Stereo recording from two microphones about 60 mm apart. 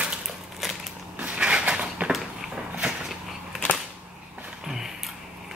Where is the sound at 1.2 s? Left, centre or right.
Centre.